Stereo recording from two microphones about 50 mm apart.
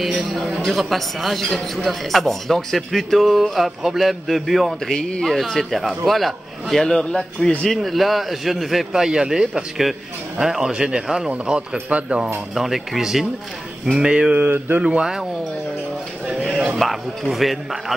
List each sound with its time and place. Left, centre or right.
0.0 s speech: centre
4.8 s speech: centre
10.4 s a man's voice: centre
10.7 s a man's voice: centre
11.5 s speech: right
12.5 s speech: centre
13.9 s a man's voice: centre
16.5 s music: centre
16.8 s speech: centre